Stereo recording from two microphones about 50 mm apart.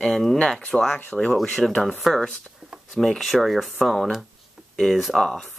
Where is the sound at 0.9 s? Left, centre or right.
Left.